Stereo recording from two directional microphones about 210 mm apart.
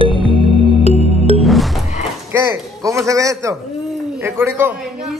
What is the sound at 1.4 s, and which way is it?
Music, centre (ahead or behind).